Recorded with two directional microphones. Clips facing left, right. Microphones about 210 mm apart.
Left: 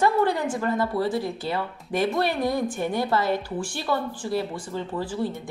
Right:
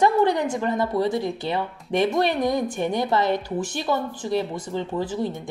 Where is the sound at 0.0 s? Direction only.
20° right (ahead or behind).